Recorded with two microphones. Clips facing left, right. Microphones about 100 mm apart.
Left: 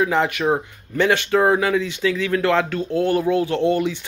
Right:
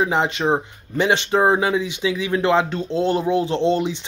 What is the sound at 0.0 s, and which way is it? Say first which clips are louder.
Speech: left 1 dB; 20° right (ahead or behind).